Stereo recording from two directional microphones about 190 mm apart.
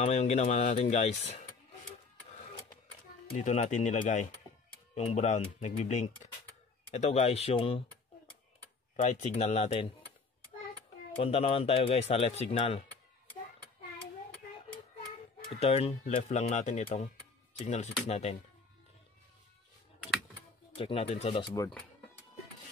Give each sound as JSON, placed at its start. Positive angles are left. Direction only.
{"t": 0.0, "sound": "speech", "side_deg": 35}
{"t": 3.3, "sound": "speech", "side_deg": 40}
{"t": 8.9, "sound": "speech", "side_deg": 35}
{"t": 11.1, "sound": "speech", "side_deg": 30}
{"t": 15.5, "sound": "speech", "side_deg": 30}
{"t": 20.7, "sound": "speech", "side_deg": 30}